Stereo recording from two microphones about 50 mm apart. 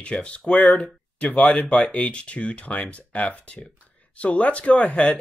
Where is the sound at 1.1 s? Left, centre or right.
Left.